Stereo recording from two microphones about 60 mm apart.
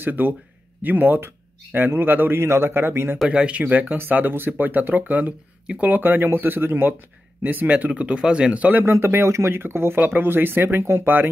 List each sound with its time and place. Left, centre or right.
0.0 s speech: right
3.3 s speech: centre
3.6 s speech: right
8.8 s speech: right